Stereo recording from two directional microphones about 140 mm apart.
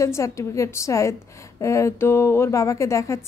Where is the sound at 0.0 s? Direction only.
20° left (ahead or behind).